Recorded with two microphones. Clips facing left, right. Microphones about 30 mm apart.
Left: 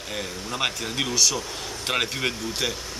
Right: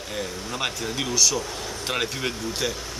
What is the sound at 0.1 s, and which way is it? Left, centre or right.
Speech, centre.